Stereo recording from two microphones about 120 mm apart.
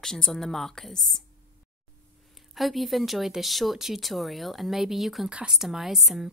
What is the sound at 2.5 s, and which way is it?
Speech, centre (ahead or behind).